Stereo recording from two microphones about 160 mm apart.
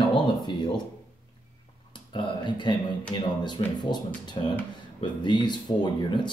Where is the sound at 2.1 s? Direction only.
30° left (ahead or behind).